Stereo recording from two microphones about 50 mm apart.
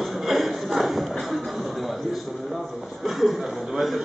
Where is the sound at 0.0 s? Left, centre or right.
Centre.